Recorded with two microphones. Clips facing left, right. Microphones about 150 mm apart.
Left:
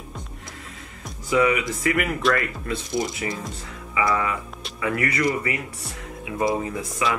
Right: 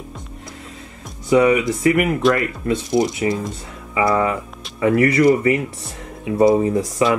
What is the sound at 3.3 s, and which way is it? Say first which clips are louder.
Speech: right 9 dB; 30° right (ahead or behind).